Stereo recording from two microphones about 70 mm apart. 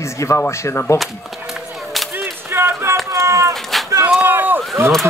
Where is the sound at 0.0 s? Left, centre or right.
Left.